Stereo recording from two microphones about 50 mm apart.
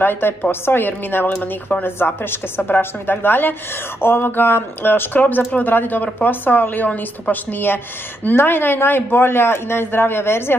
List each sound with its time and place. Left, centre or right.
0.0 s a man's voice: left